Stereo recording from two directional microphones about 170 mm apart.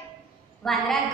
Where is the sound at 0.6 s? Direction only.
Centre (ahead or behind).